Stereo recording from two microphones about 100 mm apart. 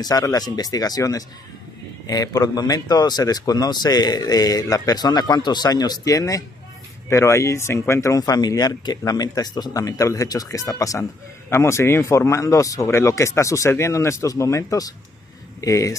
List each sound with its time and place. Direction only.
0.0 s speech: 40° left (ahead or behind)